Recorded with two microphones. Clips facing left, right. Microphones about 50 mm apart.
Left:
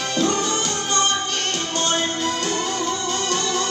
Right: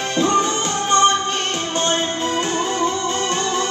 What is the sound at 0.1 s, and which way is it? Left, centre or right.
Music, right.